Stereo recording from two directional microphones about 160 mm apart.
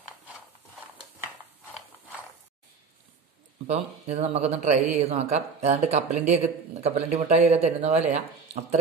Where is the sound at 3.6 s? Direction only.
40° right (ahead or behind).